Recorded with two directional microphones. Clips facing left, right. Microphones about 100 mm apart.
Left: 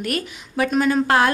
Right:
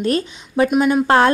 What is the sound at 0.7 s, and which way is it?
Speech, 15° right (ahead or behind).